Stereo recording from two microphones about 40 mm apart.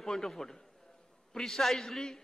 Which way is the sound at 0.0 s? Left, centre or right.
Centre.